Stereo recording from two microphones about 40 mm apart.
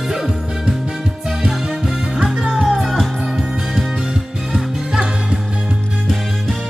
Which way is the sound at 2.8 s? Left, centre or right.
Centre.